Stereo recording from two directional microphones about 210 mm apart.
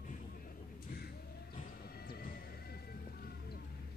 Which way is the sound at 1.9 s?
45° left (ahead or behind).